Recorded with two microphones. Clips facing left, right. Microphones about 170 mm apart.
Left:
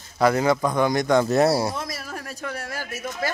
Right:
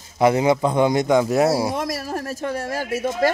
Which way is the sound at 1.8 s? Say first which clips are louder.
Right 8 dB; 40° right (ahead or behind).